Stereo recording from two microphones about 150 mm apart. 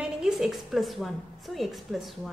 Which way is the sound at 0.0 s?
Centre (ahead or behind).